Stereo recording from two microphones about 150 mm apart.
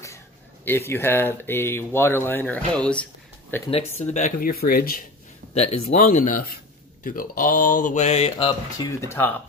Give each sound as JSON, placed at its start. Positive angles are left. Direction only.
{"t": 0.7, "sound": "speech", "side_deg": 15}
{"t": 3.7, "sound": "speech", "side_deg": 50}
{"t": 4.5, "sound": "speech", "side_deg": 75}
{"t": 5.5, "sound": "speech", "side_deg": 45}
{"t": 8.7, "sound": "speech", "side_deg": 15}